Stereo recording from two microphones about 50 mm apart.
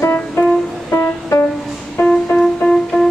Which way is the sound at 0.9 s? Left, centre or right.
Left.